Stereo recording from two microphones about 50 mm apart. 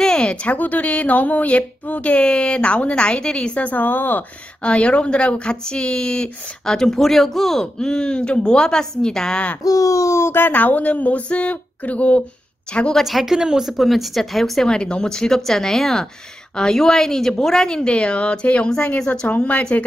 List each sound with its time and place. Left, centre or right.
0.0 s a sound: centre
0.5 s speech: left
4.6 s a woman's voice: left
9.9 s speech: left
10.3 s speech: left
12.9 s a woman's voice: centre; by 19.6 s left